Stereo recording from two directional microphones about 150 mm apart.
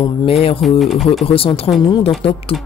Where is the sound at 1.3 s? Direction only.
40° left (ahead or behind).